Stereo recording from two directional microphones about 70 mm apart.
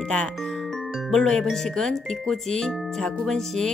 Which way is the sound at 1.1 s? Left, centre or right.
Centre.